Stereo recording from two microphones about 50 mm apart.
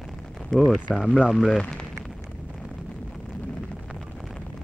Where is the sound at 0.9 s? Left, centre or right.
Left.